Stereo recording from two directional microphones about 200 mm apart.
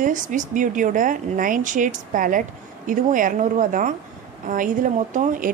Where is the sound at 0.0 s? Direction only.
40° right (ahead or behind).